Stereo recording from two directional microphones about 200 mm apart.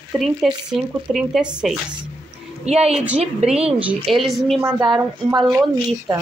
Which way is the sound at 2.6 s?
30° right (ahead or behind).